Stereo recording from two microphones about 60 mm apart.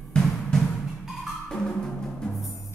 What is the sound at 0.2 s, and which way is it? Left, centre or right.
Music, centre.